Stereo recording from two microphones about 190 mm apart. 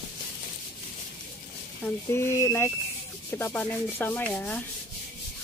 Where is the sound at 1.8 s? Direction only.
15° left (ahead or behind).